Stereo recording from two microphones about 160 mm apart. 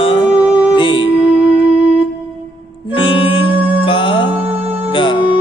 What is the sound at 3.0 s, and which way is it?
Music, 35° left (ahead or behind).